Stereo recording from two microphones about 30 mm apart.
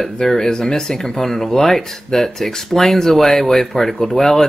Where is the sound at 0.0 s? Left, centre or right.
Centre.